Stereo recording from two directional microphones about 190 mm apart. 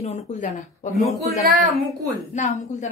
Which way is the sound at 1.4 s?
Centre (ahead or behind).